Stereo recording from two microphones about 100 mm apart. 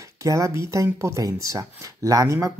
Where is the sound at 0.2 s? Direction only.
35° right (ahead or behind).